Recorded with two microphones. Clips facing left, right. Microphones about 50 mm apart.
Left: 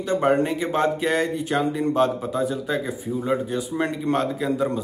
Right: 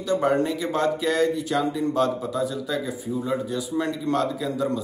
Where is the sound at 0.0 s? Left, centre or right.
Left.